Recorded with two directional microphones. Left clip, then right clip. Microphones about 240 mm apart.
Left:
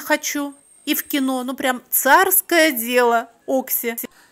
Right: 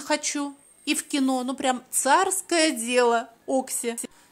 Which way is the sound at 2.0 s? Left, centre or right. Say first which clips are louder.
Left 7 dB; centre.